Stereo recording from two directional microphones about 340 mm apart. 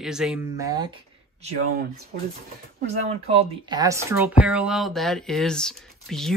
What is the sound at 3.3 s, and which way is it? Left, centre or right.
Speech, centre.